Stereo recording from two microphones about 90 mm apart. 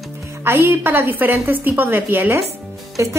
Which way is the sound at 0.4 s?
25° right (ahead or behind).